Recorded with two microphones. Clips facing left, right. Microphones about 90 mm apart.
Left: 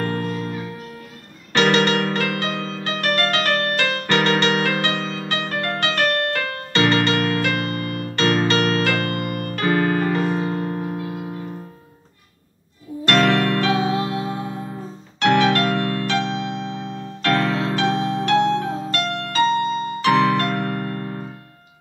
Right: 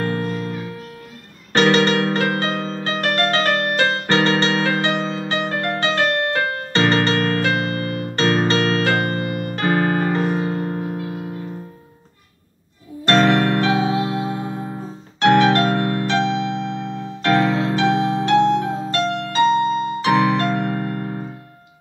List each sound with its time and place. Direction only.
0.0 s music: 30° right (ahead or behind)
1.5 s music: 35° right (ahead or behind)
9.3 s keyboard: 55° left (ahead or behind)
9.6 s piano: 30° right (ahead or behind)
13.0 s music: 30° right (ahead or behind)
16.3 s keyboard: 30° right (ahead or behind)
18.9 s music: 30° right (ahead or behind)